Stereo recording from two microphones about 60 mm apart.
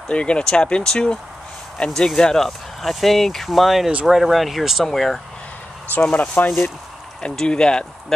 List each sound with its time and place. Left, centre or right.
0.1 s speech: centre
6.0 s speech: centre